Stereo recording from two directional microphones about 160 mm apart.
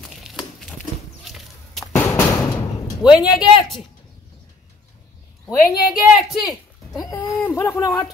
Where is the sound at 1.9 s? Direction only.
20° left (ahead or behind).